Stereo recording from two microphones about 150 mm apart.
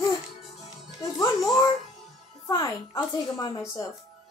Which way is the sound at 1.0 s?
20° left (ahead or behind).